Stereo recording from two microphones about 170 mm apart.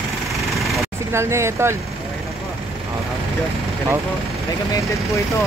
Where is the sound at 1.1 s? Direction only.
15° right (ahead or behind).